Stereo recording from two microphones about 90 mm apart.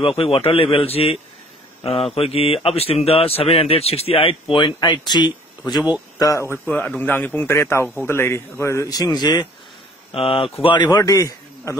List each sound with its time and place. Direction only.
0.0 s speech: 90° left
2.1 s speech: 90° left
4.7 s speech: 50° left (ahead or behind)
6.1 s speech: 40° left (ahead or behind)
7.0 s a man's voice: 20° left (ahead or behind); by 9.5 s 50° left (ahead or behind)
10.1 s speech: 90° left; by 11.0 s 55° left (ahead or behind)
11.0 s a man's voice: 40° left (ahead or behind)